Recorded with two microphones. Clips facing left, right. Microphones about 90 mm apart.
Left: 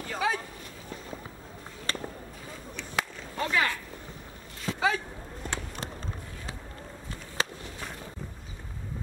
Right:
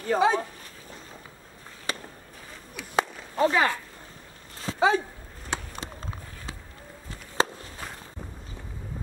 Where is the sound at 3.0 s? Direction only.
30° right (ahead or behind).